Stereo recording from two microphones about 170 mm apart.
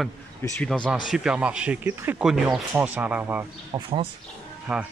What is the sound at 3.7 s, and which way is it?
Speech, 35° right (ahead or behind).